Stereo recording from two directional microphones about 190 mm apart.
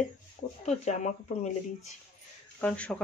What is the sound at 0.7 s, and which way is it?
Speech, 35° left (ahead or behind).